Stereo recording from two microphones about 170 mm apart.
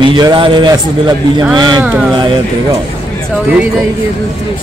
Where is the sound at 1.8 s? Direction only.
5° right (ahead or behind).